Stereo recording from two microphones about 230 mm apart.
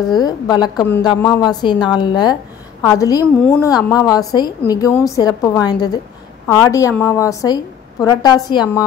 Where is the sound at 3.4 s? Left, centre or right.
Centre.